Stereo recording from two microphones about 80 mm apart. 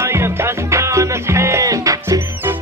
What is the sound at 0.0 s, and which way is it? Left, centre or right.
Music, right.